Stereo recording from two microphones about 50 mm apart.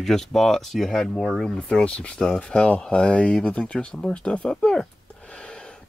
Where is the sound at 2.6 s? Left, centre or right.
Left.